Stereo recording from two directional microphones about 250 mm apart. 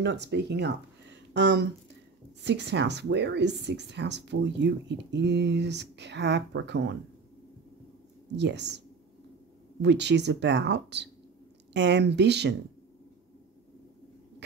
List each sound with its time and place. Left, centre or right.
0.0 s speech: right
8.4 s speech: right